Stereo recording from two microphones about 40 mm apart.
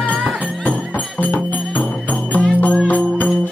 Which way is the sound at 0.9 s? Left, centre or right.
Left.